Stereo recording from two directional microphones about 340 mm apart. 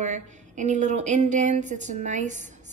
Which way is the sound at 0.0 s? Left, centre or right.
Right.